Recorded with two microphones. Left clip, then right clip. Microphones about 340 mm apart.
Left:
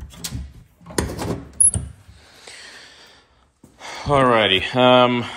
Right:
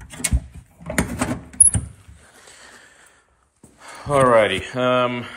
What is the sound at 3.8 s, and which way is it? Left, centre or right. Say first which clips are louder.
Speech: even; centre.